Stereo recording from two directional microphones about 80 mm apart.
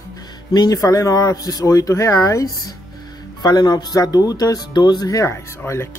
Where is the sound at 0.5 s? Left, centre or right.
Left.